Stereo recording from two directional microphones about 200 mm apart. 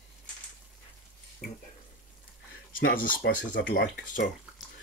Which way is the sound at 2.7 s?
45° left (ahead or behind).